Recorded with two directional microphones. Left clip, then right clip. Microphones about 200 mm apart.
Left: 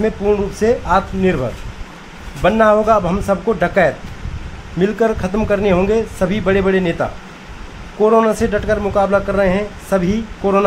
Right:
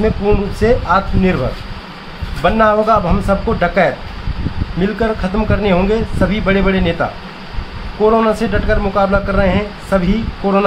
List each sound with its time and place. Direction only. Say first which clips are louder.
0.0 s a man's voice: right 1 dB; 20° left (ahead or behind)
2.4 s a man's voice: even; 25° left (ahead or behind)